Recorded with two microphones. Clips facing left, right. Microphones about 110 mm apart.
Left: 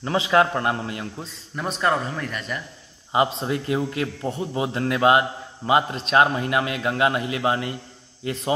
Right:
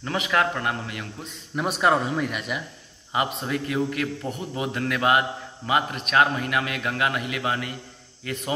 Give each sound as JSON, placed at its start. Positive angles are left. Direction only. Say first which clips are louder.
{"t": 0.0, "sound": "a man's voice", "louder": "left 5 dB", "side_deg": 25}
{"t": 1.5, "sound": "speech", "louder": "right 2 dB", "side_deg": -5}
{"t": 3.1, "sound": "a man's voice", "louder": "left 4 dB", "side_deg": 25}